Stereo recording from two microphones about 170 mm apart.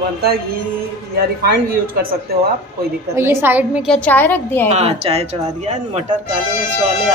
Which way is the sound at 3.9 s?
10° left (ahead or behind).